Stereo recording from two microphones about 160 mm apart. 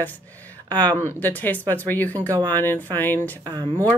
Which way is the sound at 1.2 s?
10° left (ahead or behind).